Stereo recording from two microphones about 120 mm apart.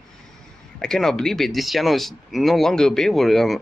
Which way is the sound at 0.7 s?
5° left (ahead or behind).